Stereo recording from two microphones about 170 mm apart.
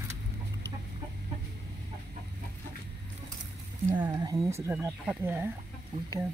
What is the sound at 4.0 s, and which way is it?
Speech, 25° right (ahead or behind).